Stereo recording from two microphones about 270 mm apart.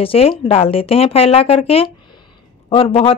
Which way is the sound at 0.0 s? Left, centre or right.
Left.